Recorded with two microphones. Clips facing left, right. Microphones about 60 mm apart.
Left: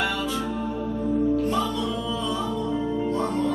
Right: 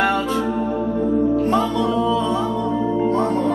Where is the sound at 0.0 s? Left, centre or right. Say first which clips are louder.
Right 7 dB; right.